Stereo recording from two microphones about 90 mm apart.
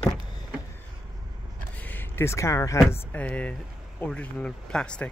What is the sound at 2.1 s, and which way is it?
Speech, 30° left (ahead or behind).